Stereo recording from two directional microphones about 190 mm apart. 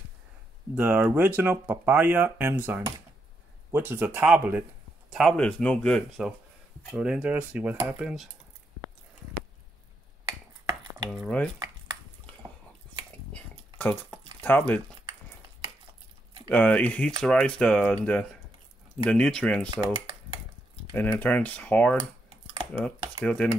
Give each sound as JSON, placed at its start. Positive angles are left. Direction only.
{"t": 0.7, "sound": "speech", "side_deg": -10}
{"t": 11.1, "sound": "speech", "side_deg": 5}
{"t": 13.3, "sound": "a sound", "side_deg": 10}
{"t": 16.4, "sound": "speech", "side_deg": 10}
{"t": 19.7, "sound": "speech", "side_deg": -20}
{"t": 20.9, "sound": "speech", "side_deg": 10}